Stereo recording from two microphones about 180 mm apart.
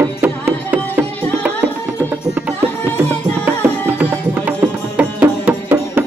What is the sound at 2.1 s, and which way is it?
Music, 10° right (ahead or behind).